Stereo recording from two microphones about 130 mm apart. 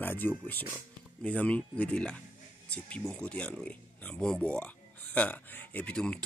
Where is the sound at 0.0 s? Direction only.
15° left (ahead or behind).